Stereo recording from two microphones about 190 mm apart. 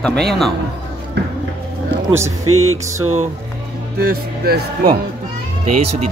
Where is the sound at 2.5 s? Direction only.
90° right.